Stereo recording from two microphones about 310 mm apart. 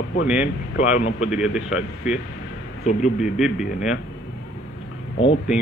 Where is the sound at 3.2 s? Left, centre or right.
Centre.